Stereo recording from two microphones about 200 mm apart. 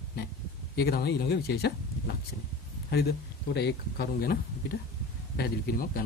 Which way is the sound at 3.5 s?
55° left (ahead or behind).